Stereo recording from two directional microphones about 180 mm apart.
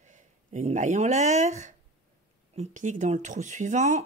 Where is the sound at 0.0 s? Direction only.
40° right (ahead or behind).